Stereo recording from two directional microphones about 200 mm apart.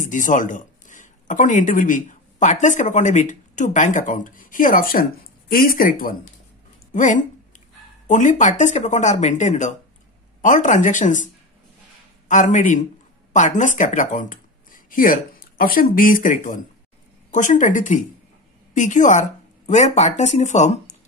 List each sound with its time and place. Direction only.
0.0 s speech: 40° left (ahead or behind)
12.3 s speech: 40° left (ahead or behind)